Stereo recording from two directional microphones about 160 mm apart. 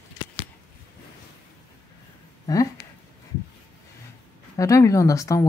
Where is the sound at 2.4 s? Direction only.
20° left (ahead or behind).